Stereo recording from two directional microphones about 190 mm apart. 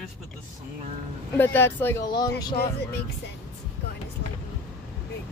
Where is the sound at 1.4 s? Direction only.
10° left (ahead or behind).